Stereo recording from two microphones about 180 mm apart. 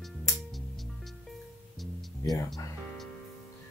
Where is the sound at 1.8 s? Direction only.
Centre (ahead or behind).